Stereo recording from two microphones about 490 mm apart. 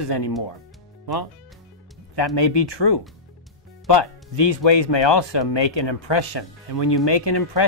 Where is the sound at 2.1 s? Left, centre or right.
Left.